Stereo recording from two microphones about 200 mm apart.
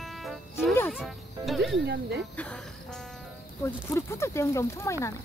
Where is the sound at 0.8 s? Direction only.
Centre (ahead or behind).